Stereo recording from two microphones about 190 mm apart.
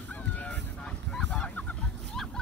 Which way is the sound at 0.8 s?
5° left (ahead or behind).